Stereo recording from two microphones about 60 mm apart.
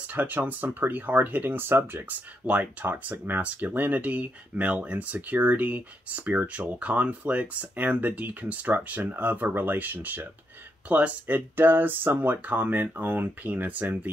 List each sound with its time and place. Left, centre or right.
0.1 s speech: right